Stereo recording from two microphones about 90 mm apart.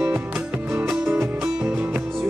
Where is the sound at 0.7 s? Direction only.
10° right (ahead or behind).